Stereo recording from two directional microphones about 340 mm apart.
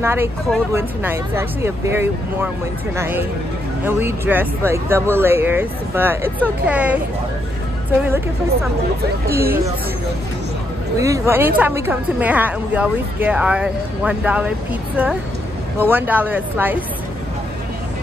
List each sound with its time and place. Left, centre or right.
0.0 s a woman's voice: centre
9.3 s speech: right
11.0 s a woman's voice: centre